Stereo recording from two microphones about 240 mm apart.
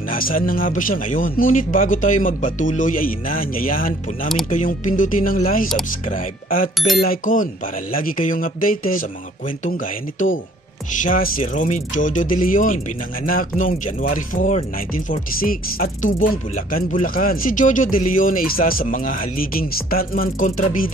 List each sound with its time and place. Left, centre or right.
0.1 s speech: left